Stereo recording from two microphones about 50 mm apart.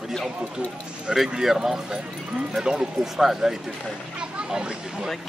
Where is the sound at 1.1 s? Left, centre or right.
Centre.